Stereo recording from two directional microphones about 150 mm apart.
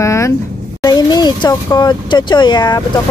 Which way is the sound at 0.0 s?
20° left (ahead or behind).